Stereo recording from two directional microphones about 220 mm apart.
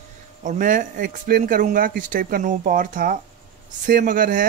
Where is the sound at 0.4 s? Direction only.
35° right (ahead or behind).